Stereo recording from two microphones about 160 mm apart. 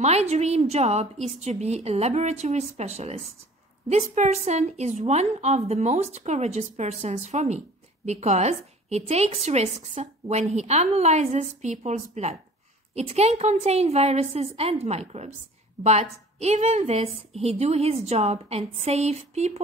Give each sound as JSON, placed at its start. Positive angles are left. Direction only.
{"t": 0.0, "sound": "a woman's voice", "side_deg": -45}